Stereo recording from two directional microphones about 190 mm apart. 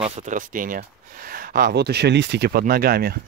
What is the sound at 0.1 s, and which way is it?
Speech, 40° right (ahead or behind).